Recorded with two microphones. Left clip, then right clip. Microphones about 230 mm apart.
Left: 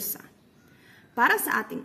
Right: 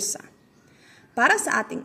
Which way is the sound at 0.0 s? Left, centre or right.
Centre.